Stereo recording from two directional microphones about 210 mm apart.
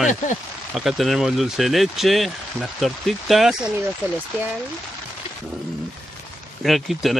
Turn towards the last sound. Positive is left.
turn(degrees=0)  # may be behind; listen again after turning